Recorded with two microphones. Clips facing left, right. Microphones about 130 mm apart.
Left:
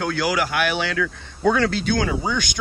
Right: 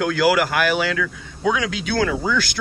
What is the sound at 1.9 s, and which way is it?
Speech, 90° right.